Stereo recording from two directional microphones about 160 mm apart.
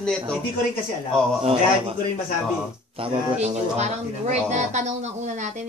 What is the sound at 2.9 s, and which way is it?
Speech, 40° right (ahead or behind).